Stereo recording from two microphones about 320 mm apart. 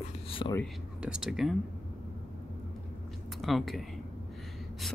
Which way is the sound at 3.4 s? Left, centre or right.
Centre.